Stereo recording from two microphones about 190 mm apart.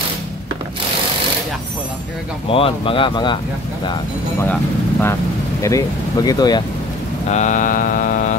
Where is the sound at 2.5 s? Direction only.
30° left (ahead or behind).